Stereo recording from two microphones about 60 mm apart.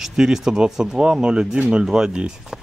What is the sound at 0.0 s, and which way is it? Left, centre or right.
Speech, centre.